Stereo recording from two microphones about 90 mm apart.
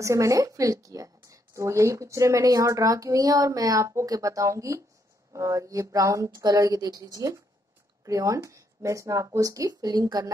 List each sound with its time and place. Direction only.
0.0 s a woman's voice: 35° right (ahead or behind)